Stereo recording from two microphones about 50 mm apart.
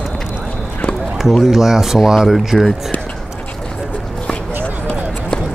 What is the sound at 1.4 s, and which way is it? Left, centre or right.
Speech, centre.